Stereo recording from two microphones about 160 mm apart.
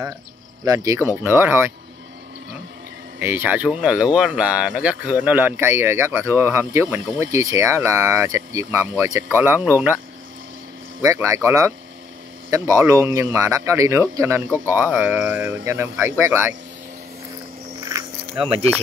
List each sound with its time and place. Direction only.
0.7 s speech: 20° right (ahead or behind)
3.2 s speech: 10° right (ahead or behind)
11.1 s speech: 20° right (ahead or behind)
17.9 s a sound: 30° right (ahead or behind)